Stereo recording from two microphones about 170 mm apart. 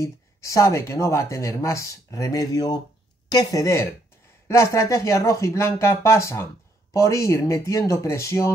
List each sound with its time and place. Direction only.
0.0 s speech: 15° left (ahead or behind)